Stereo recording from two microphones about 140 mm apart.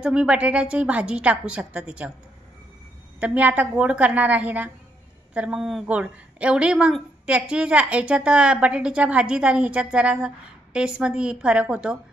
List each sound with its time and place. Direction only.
0.0 s a woman's voice: 5° right (ahead or behind)
3.2 s a woman's voice: 10° right (ahead or behind)